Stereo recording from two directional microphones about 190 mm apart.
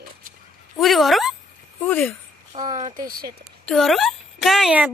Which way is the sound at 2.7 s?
40° right (ahead or behind).